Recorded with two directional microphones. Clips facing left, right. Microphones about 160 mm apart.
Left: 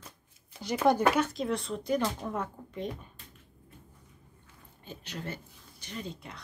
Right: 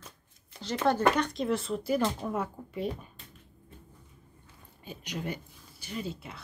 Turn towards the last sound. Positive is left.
turn(degrees=-5)  # may be behind; listen again after turning